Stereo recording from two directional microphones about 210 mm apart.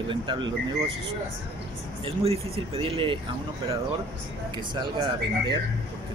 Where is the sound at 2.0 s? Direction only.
25° right (ahead or behind).